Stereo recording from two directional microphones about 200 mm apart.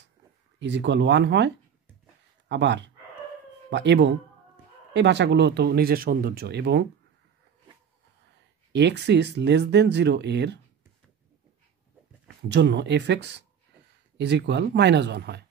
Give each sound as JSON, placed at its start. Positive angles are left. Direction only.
{"t": 0.6, "sound": "speech", "side_deg": -60}
{"t": 8.7, "sound": "speech", "side_deg": -60}
{"t": 12.4, "sound": "speech", "side_deg": -60}